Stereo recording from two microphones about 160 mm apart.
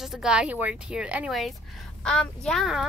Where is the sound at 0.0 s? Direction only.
5° right (ahead or behind).